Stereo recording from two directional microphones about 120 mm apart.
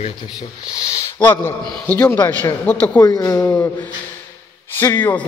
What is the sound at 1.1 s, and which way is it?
A man's voice, 20° left (ahead or behind).